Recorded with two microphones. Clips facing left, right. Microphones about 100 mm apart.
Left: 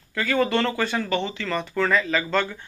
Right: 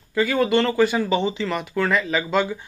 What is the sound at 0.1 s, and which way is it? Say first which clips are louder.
Speech: right 3 dB; 10° right (ahead or behind).